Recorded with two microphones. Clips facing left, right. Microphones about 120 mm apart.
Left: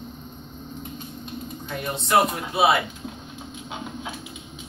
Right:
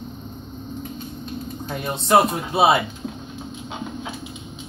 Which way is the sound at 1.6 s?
30° right (ahead or behind).